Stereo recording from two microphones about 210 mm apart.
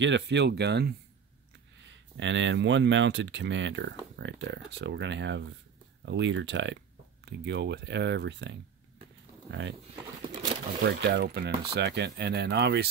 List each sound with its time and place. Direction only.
0.0 s speech: 55° right (ahead or behind)
10.8 s speech: 55° right (ahead or behind)